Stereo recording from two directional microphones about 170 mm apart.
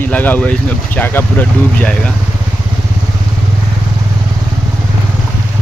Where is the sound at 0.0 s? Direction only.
10° left (ahead or behind).